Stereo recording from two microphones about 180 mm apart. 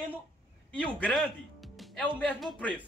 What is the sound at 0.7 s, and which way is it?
Speech, 5° left (ahead or behind).